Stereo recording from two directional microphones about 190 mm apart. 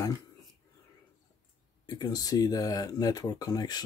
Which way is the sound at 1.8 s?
20° left (ahead or behind).